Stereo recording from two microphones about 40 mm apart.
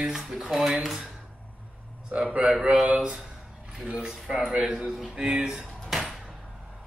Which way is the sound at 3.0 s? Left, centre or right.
Centre.